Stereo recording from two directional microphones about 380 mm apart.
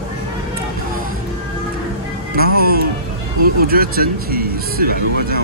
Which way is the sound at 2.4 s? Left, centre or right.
Right.